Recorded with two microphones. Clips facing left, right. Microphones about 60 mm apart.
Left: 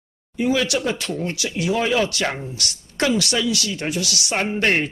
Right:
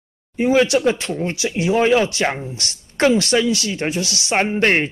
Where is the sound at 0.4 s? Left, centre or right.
Right.